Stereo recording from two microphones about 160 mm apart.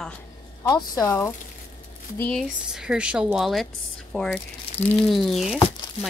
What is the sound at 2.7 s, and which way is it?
Speech, 5° right (ahead or behind).